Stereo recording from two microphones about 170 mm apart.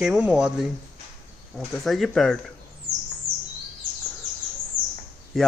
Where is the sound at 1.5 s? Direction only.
Centre (ahead or behind).